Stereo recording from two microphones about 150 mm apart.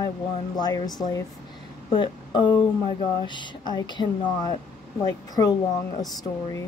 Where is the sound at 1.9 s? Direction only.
30° left (ahead or behind).